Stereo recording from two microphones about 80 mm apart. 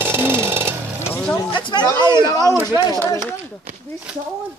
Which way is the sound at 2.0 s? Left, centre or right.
Left.